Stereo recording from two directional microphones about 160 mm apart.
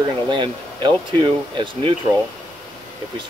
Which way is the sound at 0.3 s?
30° right (ahead or behind).